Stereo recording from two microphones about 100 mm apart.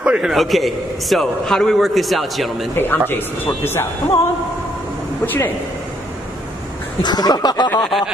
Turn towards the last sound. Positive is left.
turn(degrees=40)  # may be behind; listen again after turning